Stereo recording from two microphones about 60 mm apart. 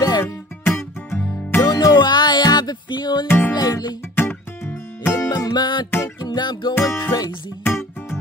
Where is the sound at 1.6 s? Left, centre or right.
Left.